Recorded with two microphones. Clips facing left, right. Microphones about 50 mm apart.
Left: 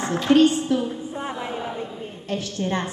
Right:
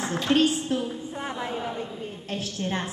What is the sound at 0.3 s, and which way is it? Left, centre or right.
A woman's voice, centre.